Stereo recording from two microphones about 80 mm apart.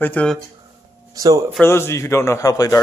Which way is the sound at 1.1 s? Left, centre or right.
Right.